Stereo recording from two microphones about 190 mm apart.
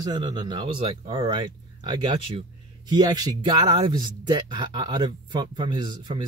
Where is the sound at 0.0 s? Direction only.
25° right (ahead or behind).